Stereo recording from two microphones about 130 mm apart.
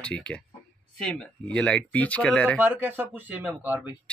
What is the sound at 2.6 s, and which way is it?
Speech, 15° right (ahead or behind).